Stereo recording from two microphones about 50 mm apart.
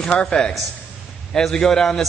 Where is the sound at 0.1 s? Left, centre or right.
Left.